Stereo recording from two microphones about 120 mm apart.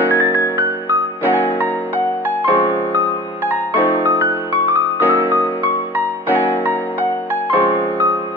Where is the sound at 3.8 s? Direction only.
15° left (ahead or behind).